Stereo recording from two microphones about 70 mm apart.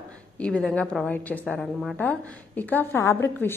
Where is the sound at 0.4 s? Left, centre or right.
Centre.